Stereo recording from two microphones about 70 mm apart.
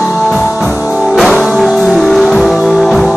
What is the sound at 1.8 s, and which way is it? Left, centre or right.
Music, centre.